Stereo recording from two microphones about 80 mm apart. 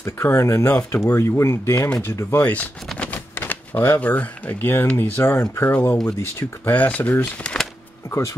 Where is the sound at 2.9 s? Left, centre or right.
Centre.